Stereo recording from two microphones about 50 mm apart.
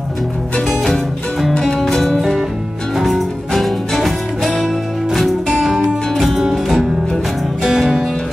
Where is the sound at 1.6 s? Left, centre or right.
Centre.